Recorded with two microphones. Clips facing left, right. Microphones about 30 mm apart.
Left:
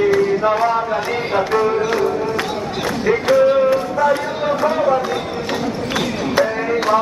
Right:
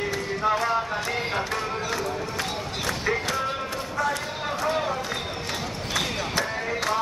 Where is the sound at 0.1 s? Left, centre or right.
Left.